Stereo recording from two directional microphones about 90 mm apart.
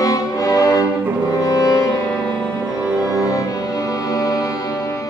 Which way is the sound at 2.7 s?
15° right (ahead or behind).